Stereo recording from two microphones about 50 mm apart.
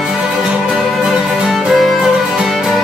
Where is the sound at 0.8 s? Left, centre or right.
Centre.